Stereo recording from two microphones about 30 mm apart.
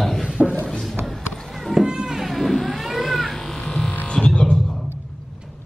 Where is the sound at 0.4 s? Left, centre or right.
Centre.